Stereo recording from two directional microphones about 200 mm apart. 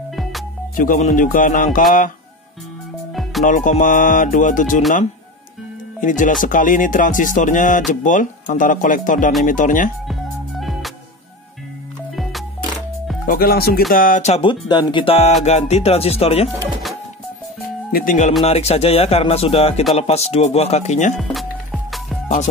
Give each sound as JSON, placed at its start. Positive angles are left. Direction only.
{"t": 0.1, "sound": "music", "side_deg": 0}
{"t": 0.7, "sound": "speech", "side_deg": 40}
{"t": 3.1, "sound": "music", "side_deg": 0}
{"t": 3.4, "sound": "speech", "side_deg": 40}
{"t": 5.9, "sound": "speech", "side_deg": 40}
{"t": 10.6, "sound": "music", "side_deg": 0}
{"t": 12.2, "sound": "music", "side_deg": 0}
{"t": 13.2, "sound": "speech", "side_deg": 45}
{"t": 13.9, "sound": "music", "side_deg": 40}
{"t": 15.4, "sound": "speech", "side_deg": 35}
{"t": 17.9, "sound": "speech", "side_deg": 40}
{"t": 21.2, "sound": "music", "side_deg": 0}